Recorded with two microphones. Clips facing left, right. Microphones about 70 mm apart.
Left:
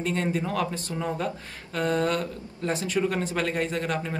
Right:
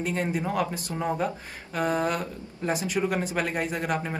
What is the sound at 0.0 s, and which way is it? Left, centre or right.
Speech, centre.